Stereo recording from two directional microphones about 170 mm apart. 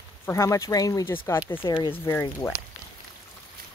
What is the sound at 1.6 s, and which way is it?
Speech, 30° left (ahead or behind).